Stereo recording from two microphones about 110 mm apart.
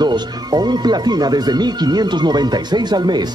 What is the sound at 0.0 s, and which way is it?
Speech, 40° right (ahead or behind).